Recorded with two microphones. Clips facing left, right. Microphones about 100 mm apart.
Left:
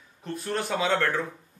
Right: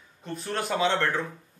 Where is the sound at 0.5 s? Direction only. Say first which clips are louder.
Right 2 dB; centre (ahead or behind).